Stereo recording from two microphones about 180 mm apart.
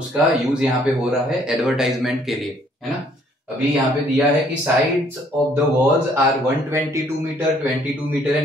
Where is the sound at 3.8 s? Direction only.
10° right (ahead or behind).